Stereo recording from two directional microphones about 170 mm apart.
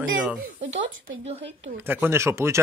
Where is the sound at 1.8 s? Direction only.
10° right (ahead or behind).